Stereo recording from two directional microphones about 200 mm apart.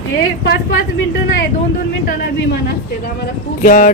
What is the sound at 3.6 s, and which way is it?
Speech, 45° left (ahead or behind).